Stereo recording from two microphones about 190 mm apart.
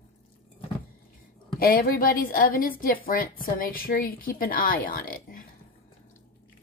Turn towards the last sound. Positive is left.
turn(degrees=50)  # may be behind; listen again after turning